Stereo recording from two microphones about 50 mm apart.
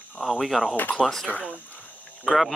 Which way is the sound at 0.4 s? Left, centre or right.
Centre.